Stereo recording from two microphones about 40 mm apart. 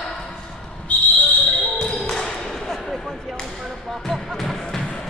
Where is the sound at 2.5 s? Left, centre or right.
Centre.